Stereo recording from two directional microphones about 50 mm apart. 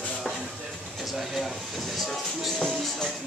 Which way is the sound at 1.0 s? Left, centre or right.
Centre.